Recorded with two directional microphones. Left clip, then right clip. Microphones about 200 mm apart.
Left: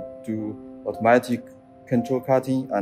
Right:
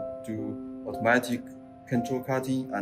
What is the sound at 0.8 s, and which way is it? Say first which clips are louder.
Speech: left 6 dB; 50° left (ahead or behind).